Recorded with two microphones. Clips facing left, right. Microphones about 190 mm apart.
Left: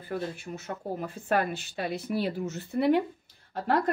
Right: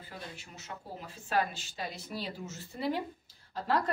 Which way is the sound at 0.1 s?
55° left (ahead or behind).